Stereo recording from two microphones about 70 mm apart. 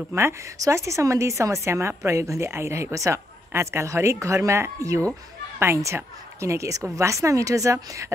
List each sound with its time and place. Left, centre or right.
0.1 s a woman's voice: right